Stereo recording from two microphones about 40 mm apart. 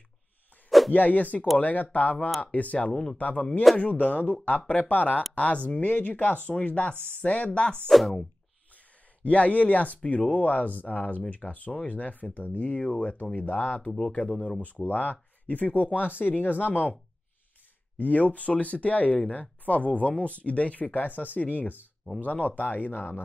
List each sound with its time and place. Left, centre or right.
0.7 s a sound: centre
0.9 s speech: left
2.9 s speech: centre
3.2 s speech: left
5.8 s speech: left
7.9 s speech: centre
9.2 s speech: left
14.9 s speech: left
17.9 s speech: left